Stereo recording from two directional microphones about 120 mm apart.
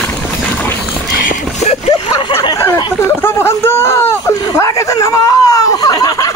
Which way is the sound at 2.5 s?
25° left (ahead or behind).